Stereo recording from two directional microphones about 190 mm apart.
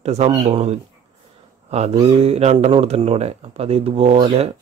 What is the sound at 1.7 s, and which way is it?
Speech, 35° right (ahead or behind).